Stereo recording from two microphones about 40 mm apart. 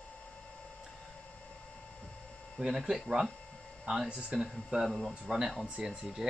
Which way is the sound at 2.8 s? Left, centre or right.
Centre.